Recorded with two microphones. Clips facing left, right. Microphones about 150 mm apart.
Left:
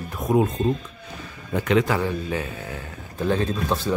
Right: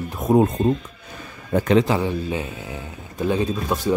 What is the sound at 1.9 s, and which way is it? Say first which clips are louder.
Speech: right 2 dB; 20° right (ahead or behind).